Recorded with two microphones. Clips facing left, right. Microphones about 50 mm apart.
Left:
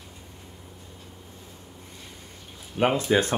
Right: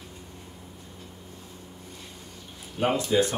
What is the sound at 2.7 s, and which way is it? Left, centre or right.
Speech, left.